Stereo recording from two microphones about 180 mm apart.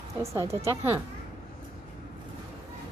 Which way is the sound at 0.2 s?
15° right (ahead or behind).